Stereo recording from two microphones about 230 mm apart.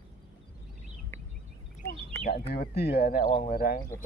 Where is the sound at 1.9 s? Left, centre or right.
Left.